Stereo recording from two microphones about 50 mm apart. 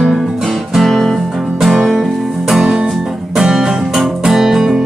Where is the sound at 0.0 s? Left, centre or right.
Centre.